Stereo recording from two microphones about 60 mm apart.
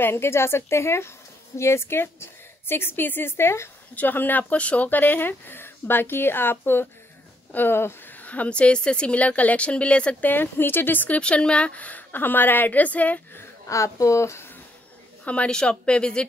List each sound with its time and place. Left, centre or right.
0.0 s a woman's voice: left
3.9 s speech: left
8.3 s a woman's voice: left
10.2 s speech: left
11.1 s a woman's voice: centre
13.7 s speech: left
15.2 s speech: left